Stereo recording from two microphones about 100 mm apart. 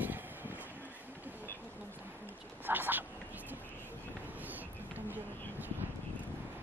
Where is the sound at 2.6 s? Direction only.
20° right (ahead or behind).